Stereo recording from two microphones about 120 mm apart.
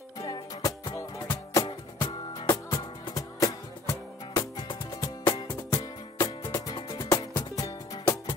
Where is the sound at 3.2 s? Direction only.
30° left (ahead or behind).